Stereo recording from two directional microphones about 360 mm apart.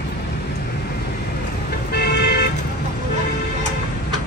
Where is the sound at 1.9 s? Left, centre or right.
Left.